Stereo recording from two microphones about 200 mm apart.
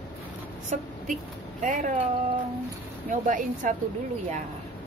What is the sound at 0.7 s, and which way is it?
A woman's voice, 35° right (ahead or behind).